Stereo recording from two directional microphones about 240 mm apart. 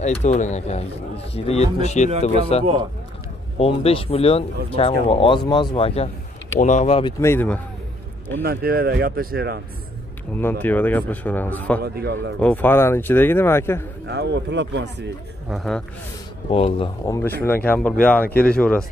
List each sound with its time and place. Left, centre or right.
0.0 s speech: left
2.6 s speech: right
3.5 s speech: left; by 7.6 s centre
8.4 s speech: right
10.3 s speech: centre
11.8 s speech: right
12.4 s speech: centre
14.0 s speech: right
15.5 s speech: centre
16.4 s speech: left; by 18.9 s centre